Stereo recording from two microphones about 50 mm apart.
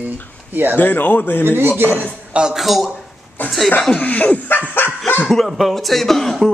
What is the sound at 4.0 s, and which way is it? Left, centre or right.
Dog, left.